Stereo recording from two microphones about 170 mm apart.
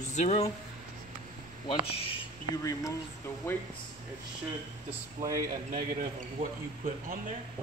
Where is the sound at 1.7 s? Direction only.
35° left (ahead or behind).